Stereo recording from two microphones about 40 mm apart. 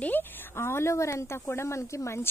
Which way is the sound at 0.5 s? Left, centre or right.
Left.